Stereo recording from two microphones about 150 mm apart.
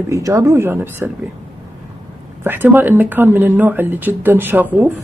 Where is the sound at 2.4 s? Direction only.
15° right (ahead or behind).